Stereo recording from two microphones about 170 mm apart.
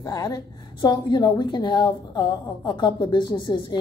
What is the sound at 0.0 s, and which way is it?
A woman's voice, 20° left (ahead or behind).